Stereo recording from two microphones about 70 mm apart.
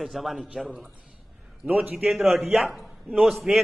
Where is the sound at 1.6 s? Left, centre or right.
Right.